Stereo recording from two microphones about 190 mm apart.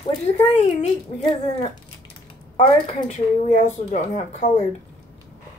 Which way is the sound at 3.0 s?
40° left (ahead or behind).